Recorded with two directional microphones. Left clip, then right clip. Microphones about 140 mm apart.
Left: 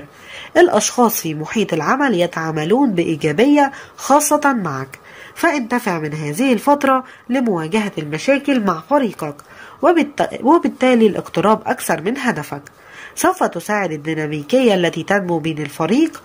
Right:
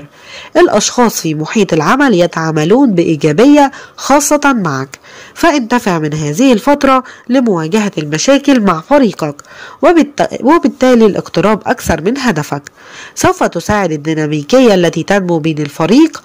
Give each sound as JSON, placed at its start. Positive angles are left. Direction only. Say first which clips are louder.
{"t": 0.5, "sound": "speech", "louder": "right 4 dB", "side_deg": -35}